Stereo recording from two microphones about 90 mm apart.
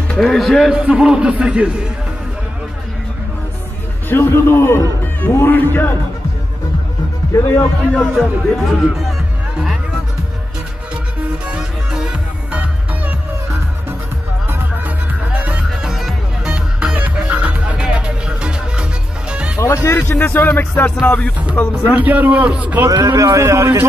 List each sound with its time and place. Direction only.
0.1 s a man's voice: 5° left (ahead or behind); by 1.7 s 15° right (ahead or behind)
4.1 s music: 25° left (ahead or behind)
7.3 s speech: 30° left (ahead or behind)
7.9 s speech: 5° left (ahead or behind)
11.4 s music: 10° right (ahead or behind)
15.3 s music: 15° right (ahead or behind)
19.6 s speech: 30° left (ahead or behind)
20.1 s music: 20° left (ahead or behind)
21.8 s a man's voice: 15° right (ahead or behind)
23.0 s a man's voice: 35° right (ahead or behind)